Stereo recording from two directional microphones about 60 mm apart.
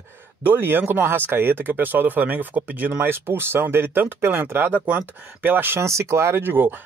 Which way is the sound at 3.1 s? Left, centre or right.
Right.